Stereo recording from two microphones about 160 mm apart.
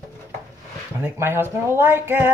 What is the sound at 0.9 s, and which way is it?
Speech, 15° right (ahead or behind).